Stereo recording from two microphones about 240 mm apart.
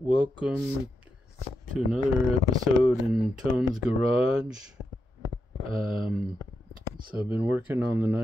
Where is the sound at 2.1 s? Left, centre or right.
Centre.